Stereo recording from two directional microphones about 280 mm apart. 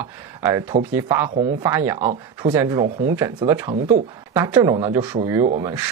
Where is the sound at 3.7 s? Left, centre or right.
Right.